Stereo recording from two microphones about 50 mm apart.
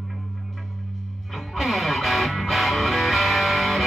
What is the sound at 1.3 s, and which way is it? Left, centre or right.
Music, centre.